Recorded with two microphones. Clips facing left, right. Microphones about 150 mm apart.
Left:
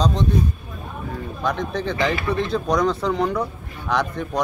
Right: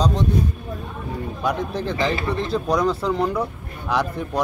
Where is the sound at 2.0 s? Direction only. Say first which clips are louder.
Even; 30° right (ahead or behind).